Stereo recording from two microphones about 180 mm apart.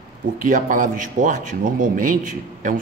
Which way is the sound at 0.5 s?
50° right (ahead or behind).